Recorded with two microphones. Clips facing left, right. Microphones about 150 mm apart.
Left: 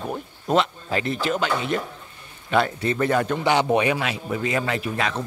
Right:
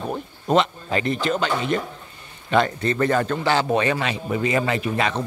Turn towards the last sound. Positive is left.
turn(degrees=0)  # may be behind; listen again after turning